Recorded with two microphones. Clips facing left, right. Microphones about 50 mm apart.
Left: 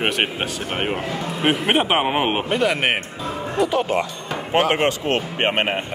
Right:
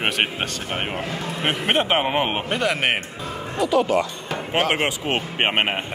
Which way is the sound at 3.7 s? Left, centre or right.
Left.